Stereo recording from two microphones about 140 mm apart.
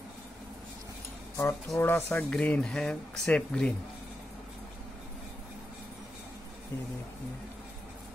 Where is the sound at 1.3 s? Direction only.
20° left (ahead or behind).